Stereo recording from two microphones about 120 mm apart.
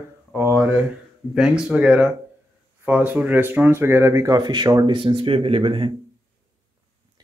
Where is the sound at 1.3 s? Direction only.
5° right (ahead or behind); by 5.9 s 45° right (ahead or behind).